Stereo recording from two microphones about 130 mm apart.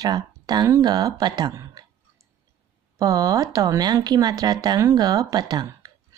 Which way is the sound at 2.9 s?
30° right (ahead or behind).